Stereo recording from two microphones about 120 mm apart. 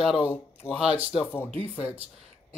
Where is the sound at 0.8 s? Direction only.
10° right (ahead or behind).